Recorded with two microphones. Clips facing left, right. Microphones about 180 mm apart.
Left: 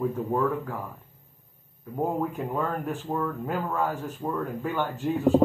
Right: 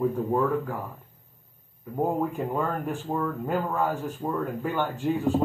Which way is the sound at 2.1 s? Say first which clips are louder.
Right 1 dB; 5° right (ahead or behind).